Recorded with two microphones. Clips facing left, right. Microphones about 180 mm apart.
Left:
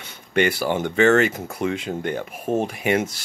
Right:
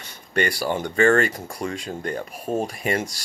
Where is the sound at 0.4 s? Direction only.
5° left (ahead or behind).